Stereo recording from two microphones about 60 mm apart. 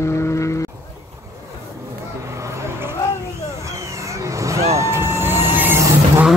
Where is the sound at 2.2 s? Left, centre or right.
Right.